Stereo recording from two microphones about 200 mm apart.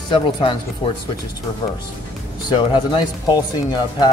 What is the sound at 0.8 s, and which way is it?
Speech, 30° left (ahead or behind).